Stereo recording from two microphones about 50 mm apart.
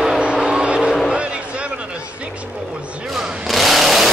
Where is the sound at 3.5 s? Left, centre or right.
Centre.